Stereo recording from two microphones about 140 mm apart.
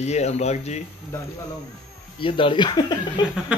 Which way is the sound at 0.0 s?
50° left (ahead or behind).